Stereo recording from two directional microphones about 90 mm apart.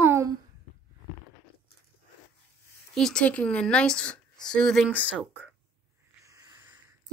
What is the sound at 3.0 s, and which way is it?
A woman's voice, 5° left (ahead or behind).